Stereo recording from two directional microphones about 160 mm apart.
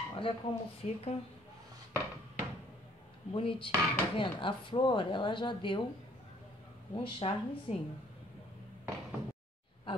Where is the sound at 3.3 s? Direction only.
35° left (ahead or behind).